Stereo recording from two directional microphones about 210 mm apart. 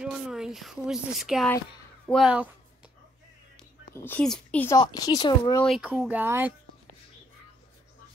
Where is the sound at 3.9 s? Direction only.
10° left (ahead or behind).